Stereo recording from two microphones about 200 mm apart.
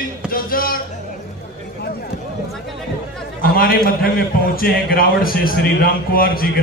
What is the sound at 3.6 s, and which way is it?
A man's voice, 45° left (ahead or behind).